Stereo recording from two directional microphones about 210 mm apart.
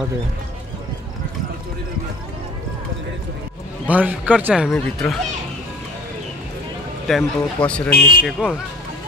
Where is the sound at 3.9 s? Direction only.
5° right (ahead or behind).